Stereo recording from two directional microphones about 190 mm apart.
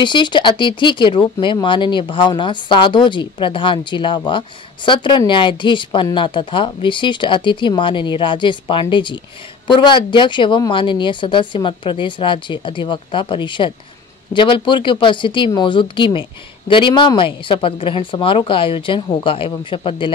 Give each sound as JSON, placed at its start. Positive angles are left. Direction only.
{"t": 0.0, "sound": "speech", "side_deg": 25}